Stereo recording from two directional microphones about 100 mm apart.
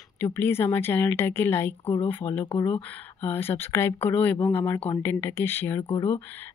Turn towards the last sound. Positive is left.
turn(degrees=20)  # may be behind; listen again after turning